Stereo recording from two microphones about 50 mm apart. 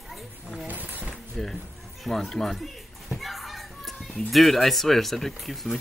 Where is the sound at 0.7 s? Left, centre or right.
Right.